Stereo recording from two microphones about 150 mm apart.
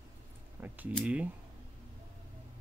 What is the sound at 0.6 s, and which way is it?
Speech, 15° right (ahead or behind).